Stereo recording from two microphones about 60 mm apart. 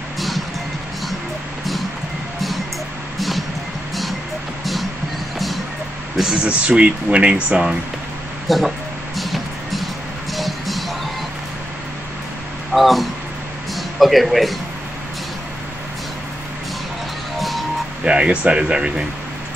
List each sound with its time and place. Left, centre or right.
3.2 s music: centre
6.1 s speech: centre
8.5 s music: centre
12.7 s speech: centre
17.4 s music: centre
18.0 s speech: centre